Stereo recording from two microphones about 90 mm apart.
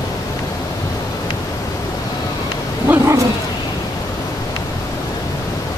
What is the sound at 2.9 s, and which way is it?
Dog, 20° right (ahead or behind).